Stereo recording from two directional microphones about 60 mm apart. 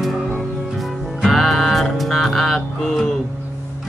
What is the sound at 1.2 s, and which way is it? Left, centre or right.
Music, centre.